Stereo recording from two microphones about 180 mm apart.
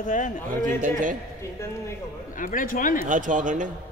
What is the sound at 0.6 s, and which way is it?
Speech, 45° right (ahead or behind).